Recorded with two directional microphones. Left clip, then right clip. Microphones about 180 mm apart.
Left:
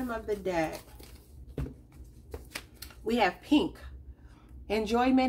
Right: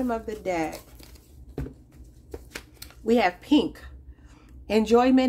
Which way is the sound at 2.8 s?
40° right (ahead or behind).